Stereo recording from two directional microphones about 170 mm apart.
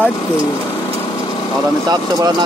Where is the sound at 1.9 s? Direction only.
25° right (ahead or behind).